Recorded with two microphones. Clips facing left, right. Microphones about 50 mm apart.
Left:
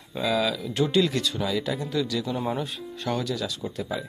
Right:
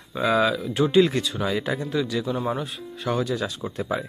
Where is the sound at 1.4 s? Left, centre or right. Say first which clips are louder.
Right 2 dB; right.